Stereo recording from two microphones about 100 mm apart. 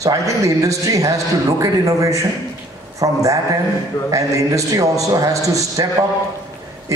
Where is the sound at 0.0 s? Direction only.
35° right (ahead or behind).